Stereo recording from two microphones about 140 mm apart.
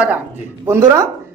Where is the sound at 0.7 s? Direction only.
20° right (ahead or behind).